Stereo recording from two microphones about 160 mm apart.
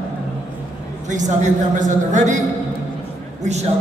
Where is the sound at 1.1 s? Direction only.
50° right (ahead or behind).